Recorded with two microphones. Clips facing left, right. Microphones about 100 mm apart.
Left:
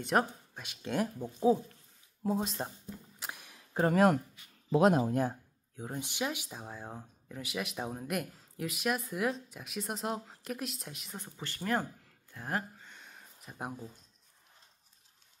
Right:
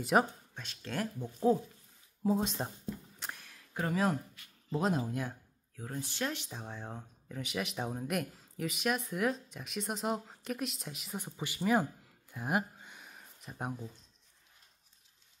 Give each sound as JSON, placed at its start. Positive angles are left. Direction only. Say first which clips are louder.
{"t": 0.0, "sound": "speech", "louder": "right 1 dB", "side_deg": 0}
{"t": 0.6, "sound": "speech", "louder": "left 4 dB", "side_deg": 15}
{"t": 2.2, "sound": "speech", "louder": "right 1 dB", "side_deg": 0}
{"t": 3.2, "sound": "a sound", "louder": "left 1 dB", "side_deg": 10}
{"t": 3.9, "sound": "speech", "louder": "left 5 dB", "side_deg": 60}
{"t": 5.8, "sound": "speech", "louder": "left 1 dB", "side_deg": 20}
{"t": 11.1, "sound": "speech", "louder": "right 5 dB", "side_deg": -15}